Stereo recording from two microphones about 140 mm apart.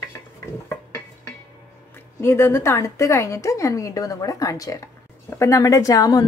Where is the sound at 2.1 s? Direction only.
20° left (ahead or behind).